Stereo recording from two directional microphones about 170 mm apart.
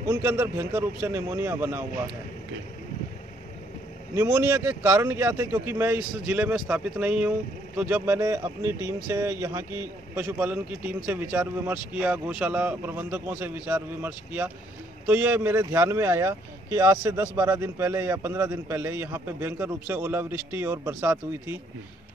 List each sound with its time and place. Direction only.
0.0 s speech: 15° right (ahead or behind)
4.1 s speech: 15° right (ahead or behind)